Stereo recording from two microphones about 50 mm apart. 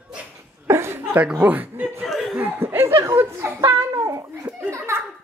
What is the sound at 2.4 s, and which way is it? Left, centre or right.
Chuckle, right.